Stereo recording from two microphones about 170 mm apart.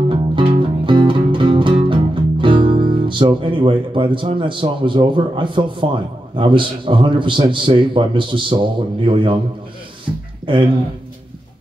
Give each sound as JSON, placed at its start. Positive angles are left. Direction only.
{"t": 0.1, "sound": "music", "side_deg": -30}
{"t": 6.3, "sound": "a man's voice", "side_deg": -30}
{"t": 10.1, "sound": "a sound", "side_deg": -10}
{"t": 10.5, "sound": "speech", "side_deg": -30}